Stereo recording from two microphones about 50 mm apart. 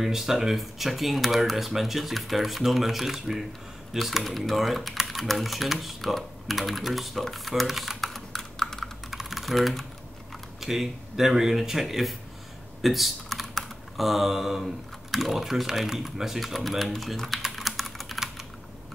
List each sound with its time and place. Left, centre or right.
0.0 s speech: centre
9.1 s typing: centre
10.6 s speech: centre